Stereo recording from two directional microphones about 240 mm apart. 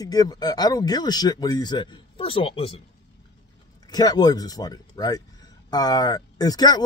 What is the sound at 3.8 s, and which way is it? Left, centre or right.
A man's voice, centre.